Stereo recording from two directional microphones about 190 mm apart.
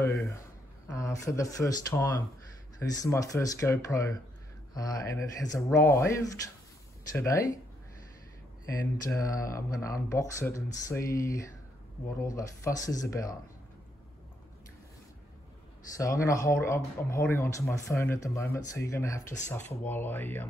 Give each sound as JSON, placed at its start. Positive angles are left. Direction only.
{"t": 0.9, "sound": "speech", "side_deg": 15}
{"t": 8.6, "sound": "speech", "side_deg": 15}
{"t": 16.0, "sound": "speech", "side_deg": 15}